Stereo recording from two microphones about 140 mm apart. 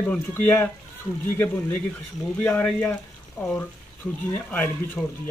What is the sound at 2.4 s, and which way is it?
Speech, 15° left (ahead or behind).